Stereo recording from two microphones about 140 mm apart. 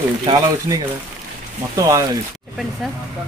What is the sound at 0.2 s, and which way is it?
Speech, 30° right (ahead or behind).